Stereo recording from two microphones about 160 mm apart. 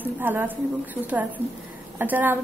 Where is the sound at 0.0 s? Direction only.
10° right (ahead or behind).